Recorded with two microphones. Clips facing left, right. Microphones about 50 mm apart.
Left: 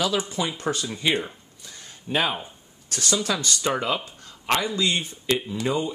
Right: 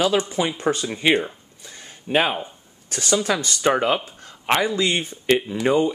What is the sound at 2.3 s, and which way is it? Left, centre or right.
Speech, right.